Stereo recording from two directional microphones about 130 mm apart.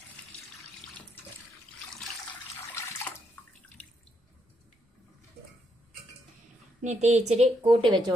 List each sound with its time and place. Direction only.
6.8 s a woman's voice: 65° right (ahead or behind)
7.6 s speech: 40° right (ahead or behind)